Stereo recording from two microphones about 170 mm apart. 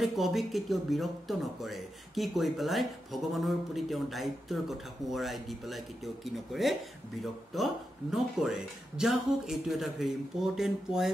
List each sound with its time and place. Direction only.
0.0 s speech: centre (ahead or behind)